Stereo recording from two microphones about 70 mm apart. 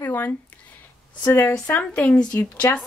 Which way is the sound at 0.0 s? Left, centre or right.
Left.